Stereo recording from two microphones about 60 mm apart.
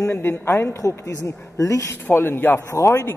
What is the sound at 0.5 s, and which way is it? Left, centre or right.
Speech, left.